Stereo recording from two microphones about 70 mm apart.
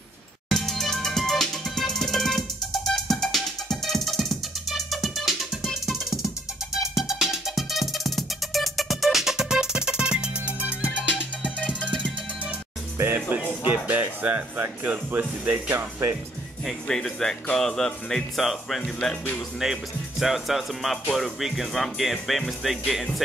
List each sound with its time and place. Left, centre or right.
0.5 s music: centre
11.1 s music: centre
12.9 s music: right
14.2 s speech: right
15.7 s speech: right
16.6 s speech: centre
19.6 s speech: centre